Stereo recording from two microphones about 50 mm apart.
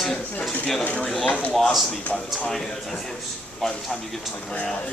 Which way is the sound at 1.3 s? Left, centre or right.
Left.